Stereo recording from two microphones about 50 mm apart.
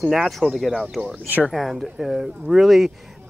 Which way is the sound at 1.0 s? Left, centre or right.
Right.